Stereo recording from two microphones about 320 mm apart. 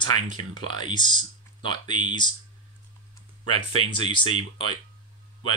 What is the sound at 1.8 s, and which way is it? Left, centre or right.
Speech, right.